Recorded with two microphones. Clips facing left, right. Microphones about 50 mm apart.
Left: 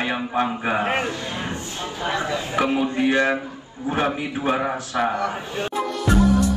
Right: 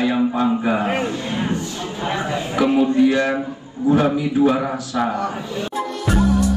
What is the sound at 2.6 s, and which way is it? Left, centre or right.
A man's voice, left.